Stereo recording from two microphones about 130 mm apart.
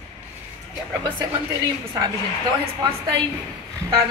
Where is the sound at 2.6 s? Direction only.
35° right (ahead or behind).